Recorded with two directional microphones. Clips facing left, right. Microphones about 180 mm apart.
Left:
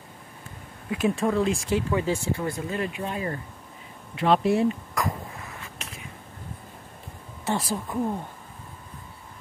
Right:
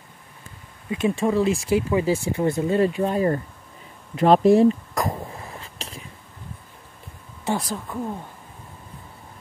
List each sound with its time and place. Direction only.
0.8 s speech: centre (ahead or behind)
2.3 s speech: 25° right (ahead or behind)
4.1 s cough: 40° right (ahead or behind)
7.5 s speech: 10° left (ahead or behind)